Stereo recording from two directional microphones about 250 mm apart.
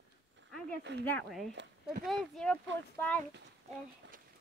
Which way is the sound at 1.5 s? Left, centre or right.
Right.